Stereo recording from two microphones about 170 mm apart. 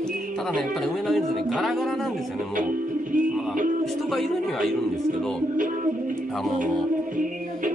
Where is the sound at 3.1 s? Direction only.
50° right (ahead or behind).